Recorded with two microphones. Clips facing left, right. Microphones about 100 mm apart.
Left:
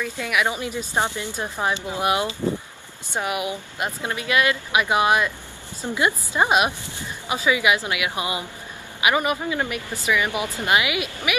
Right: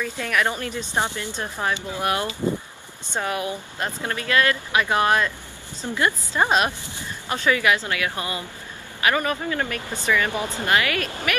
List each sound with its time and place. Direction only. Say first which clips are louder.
0.0 s speech: even; 10° left (ahead or behind)